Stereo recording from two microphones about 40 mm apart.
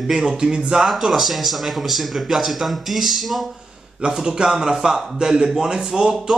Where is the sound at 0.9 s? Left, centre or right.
Centre.